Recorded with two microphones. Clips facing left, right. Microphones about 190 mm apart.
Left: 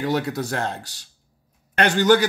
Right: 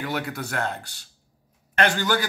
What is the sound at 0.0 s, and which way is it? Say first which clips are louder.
Speech: left 6 dB; 35° left (ahead or behind).